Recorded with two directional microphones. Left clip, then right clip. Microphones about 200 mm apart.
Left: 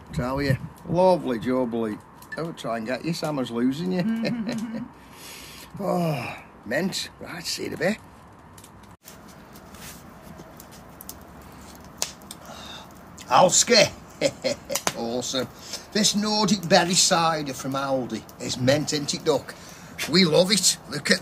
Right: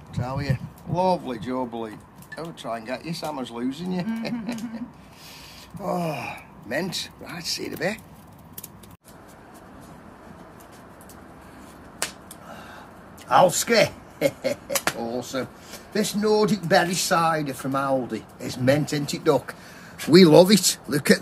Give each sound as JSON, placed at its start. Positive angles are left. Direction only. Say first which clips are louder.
{"t": 0.1, "sound": "speech", "louder": "left 4 dB", "side_deg": -50}
{"t": 5.8, "sound": "speech", "louder": "left 1 dB", "side_deg": -20}
{"t": 13.3, "sound": "speech", "louder": "left 1 dB", "side_deg": -10}
{"t": 20.1, "sound": "speech", "louder": "right 6 dB", "side_deg": -55}